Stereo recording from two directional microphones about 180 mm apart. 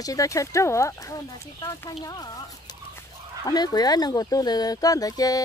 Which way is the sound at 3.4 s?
20° left (ahead or behind).